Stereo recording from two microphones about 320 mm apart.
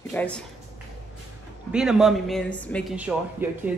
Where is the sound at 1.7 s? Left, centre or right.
Centre.